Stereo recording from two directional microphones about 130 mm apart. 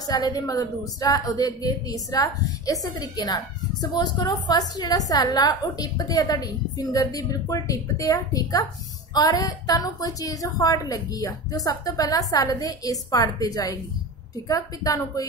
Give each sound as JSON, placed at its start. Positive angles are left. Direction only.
{"t": 0.0, "sound": "a woman's voice", "side_deg": 30}